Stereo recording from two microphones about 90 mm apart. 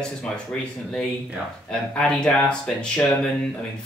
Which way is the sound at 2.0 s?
10° left (ahead or behind).